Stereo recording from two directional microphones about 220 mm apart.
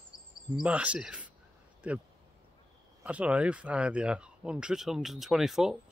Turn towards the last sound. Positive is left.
turn(degrees=0)  # may be behind; listen again after turning